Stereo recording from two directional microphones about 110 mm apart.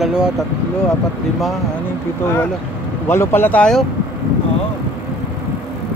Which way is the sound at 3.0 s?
20° left (ahead or behind).